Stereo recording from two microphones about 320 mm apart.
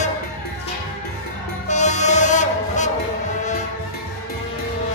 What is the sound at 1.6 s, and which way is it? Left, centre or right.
Vehicle, left.